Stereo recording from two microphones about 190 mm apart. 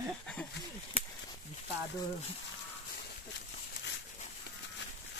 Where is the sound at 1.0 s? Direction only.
30° left (ahead or behind).